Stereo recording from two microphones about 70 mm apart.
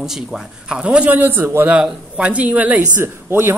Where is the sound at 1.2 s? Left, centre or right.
Right.